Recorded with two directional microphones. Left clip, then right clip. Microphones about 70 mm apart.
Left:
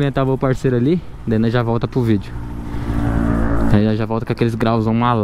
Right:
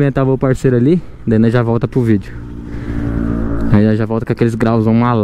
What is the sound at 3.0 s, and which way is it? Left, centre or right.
Vehicle, left.